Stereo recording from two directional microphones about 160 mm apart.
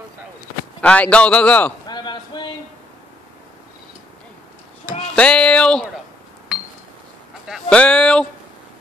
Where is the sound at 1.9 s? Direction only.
25° left (ahead or behind).